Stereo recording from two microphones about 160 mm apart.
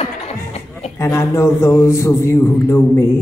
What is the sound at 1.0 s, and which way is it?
A man's voice, 15° left (ahead or behind).